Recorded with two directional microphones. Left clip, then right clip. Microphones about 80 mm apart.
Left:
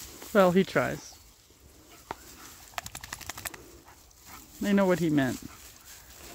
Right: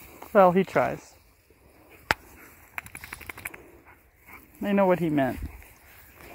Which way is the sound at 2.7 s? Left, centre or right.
Left.